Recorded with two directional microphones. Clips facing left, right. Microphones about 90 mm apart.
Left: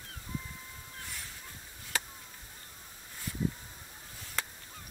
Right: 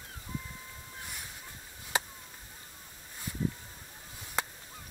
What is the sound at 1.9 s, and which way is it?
Chop, 20° right (ahead or behind).